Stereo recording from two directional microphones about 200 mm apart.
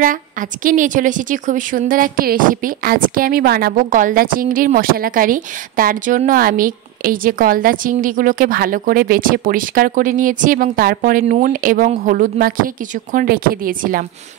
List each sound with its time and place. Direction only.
0.0 s a woman's voice: 40° right (ahead or behind)